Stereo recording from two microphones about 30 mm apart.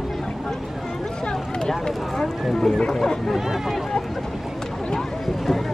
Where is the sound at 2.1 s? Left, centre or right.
Centre.